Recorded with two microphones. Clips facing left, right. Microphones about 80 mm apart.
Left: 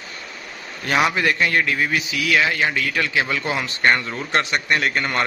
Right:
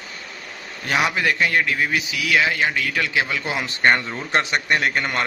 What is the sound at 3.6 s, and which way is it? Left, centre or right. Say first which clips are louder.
A man's voice: right 2 dB; centre.